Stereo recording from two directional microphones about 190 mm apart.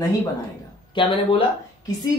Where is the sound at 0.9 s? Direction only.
25° left (ahead or behind).